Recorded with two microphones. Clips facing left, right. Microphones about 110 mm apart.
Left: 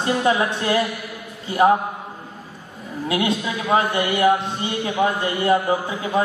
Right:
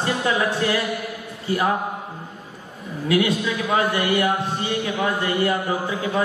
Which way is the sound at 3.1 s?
25° left (ahead or behind).